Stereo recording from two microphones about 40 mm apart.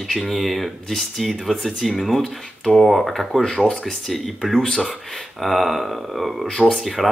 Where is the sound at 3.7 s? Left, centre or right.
Centre.